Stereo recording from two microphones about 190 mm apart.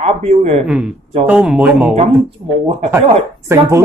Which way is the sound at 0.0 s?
35° right (ahead or behind).